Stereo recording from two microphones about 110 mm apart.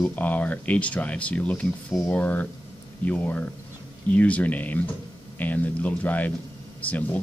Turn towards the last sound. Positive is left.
turn(degrees=15)  # may be behind; listen again after turning